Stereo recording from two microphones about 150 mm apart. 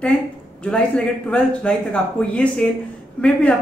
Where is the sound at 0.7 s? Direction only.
5° left (ahead or behind).